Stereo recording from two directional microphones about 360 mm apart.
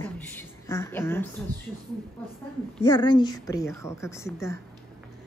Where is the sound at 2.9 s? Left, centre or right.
Centre.